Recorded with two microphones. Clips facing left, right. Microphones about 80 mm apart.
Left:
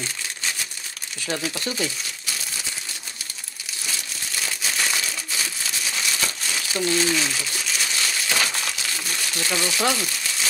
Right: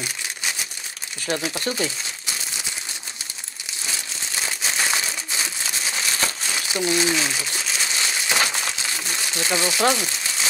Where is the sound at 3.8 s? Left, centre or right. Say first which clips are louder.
Right 1 dB; right.